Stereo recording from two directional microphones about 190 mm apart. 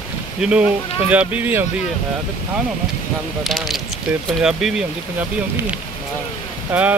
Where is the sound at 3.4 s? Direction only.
Centre (ahead or behind).